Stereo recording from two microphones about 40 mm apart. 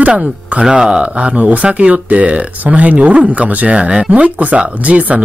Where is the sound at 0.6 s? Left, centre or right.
Centre.